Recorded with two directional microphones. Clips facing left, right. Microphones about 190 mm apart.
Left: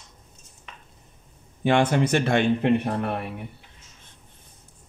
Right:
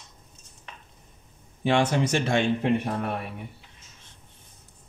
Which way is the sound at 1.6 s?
55° left (ahead or behind).